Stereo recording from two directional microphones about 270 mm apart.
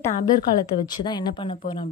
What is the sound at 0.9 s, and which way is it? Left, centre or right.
A woman's voice, centre.